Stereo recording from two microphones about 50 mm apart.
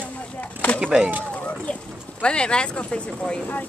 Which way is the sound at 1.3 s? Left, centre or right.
Left.